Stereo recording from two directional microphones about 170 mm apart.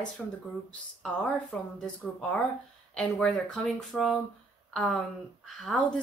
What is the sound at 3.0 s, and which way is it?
Speech, 5° left (ahead or behind).